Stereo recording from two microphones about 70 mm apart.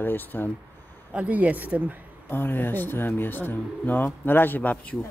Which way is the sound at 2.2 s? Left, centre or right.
Left.